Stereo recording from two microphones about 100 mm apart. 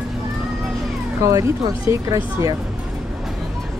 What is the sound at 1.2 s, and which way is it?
Speech, 30° right (ahead or behind).